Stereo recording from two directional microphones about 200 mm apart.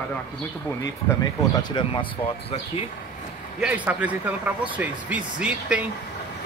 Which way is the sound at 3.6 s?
5° right (ahead or behind).